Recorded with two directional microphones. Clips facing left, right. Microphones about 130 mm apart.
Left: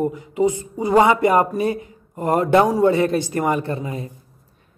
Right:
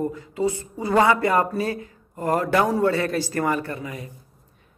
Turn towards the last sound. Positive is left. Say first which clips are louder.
# left 5 dB
turn(degrees=30)  # may be behind; listen again after turning